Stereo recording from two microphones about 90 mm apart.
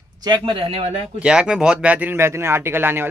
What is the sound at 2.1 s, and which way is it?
Speech, 30° right (ahead or behind).